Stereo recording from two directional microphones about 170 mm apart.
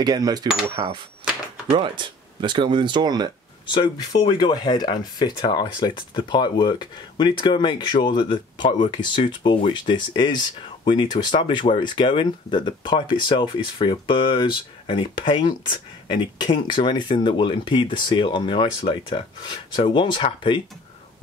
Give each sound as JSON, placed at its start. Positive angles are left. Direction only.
{"t": 0.0, "sound": "speech", "side_deg": -25}
{"t": 3.6, "sound": "speech", "side_deg": 25}